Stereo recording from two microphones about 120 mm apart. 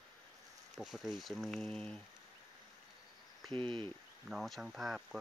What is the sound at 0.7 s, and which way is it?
Speech, 5° right (ahead or behind).